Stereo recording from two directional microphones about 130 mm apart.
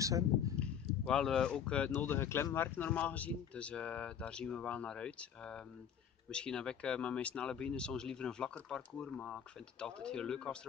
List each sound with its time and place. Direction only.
0.0 s speech: 25° right (ahead or behind)
0.6 s speech: 5° left (ahead or behind)